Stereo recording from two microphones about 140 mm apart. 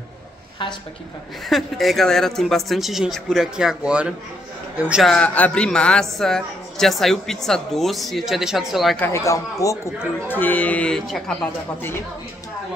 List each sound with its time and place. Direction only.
1.5 s a woman's voice: centre (ahead or behind)
5.0 s a woman's voice: 5° left (ahead or behind)
9.0 s speech: 20° left (ahead or behind)